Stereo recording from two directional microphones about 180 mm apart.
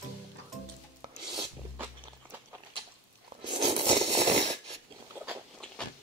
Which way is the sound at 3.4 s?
30° right (ahead or behind).